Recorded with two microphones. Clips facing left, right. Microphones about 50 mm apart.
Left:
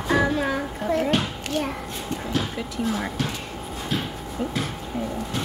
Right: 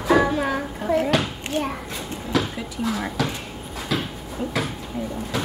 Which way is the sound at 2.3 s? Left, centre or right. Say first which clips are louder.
Right 5 dB; right.